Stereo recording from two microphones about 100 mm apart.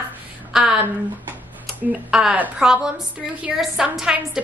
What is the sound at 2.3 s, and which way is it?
Speech, 15° right (ahead or behind).